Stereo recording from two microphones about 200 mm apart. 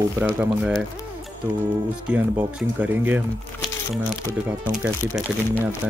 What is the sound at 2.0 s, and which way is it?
Speech, 10° right (ahead or behind).